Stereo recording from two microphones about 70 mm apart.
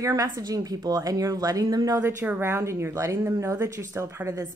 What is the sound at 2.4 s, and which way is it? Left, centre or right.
Speech, right.